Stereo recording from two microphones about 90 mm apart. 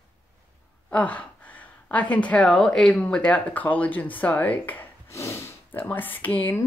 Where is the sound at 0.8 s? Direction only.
15° left (ahead or behind).